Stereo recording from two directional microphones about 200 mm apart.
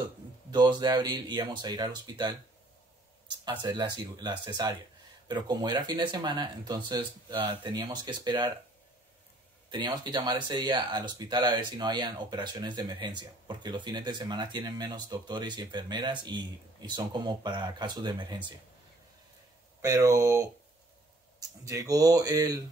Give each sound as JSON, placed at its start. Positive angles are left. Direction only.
{"t": 0.5, "sound": "speech", "side_deg": -20}
{"t": 9.7, "sound": "speech", "side_deg": -25}
{"t": 19.8, "sound": "speech", "side_deg": -15}